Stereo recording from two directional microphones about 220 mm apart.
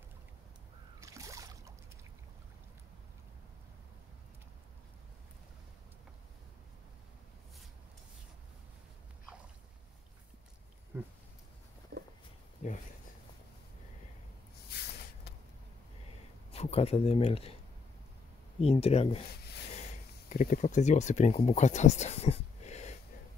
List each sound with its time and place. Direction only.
1.0 s boat: 15° right (ahead or behind)
10.9 s a sound: 10° right (ahead or behind)
11.9 s a sound: 45° right (ahead or behind)
12.6 s speech: 35° left (ahead or behind)
16.5 s speech: 30° left (ahead or behind)
18.6 s speech: 25° left (ahead or behind)
20.2 s speech: 35° left (ahead or behind)